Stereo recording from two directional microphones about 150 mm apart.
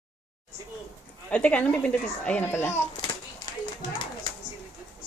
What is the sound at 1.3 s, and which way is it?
Speech, 10° left (ahead or behind).